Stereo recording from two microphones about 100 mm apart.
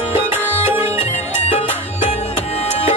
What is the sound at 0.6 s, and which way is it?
Music, 25° right (ahead or behind).